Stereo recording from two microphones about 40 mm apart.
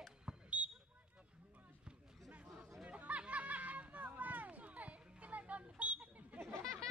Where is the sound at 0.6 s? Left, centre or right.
Right.